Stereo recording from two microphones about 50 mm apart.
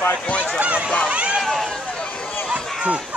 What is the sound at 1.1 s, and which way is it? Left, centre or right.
Run, right.